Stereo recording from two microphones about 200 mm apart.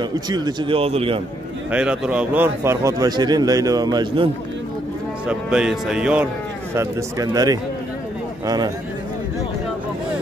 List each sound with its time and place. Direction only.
0.0 s speech: 20° right (ahead or behind)
1.7 s a man's voice: 5° right (ahead or behind); by 4.3 s 25° right (ahead or behind)
5.2 s a man's voice: 5° right (ahead or behind)